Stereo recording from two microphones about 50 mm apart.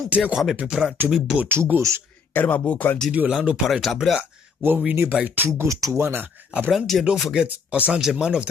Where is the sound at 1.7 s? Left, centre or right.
Right.